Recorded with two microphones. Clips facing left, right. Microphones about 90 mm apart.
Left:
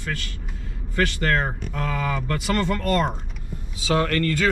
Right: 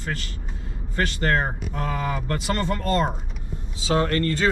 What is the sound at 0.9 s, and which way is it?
Speech, 20° right (ahead or behind).